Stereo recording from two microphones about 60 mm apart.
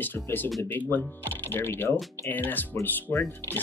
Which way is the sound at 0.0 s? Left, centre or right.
Left.